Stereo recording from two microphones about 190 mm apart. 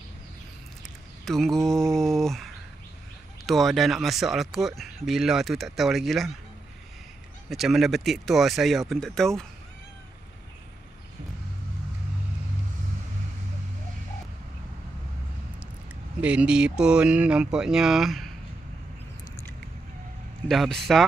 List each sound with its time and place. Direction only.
1.2 s mantra: centre (ahead or behind)
3.4 s speech: centre (ahead or behind)
7.4 s speech: centre (ahead or behind)
16.2 s speech: 5° right (ahead or behind)
20.4 s speech: centre (ahead or behind)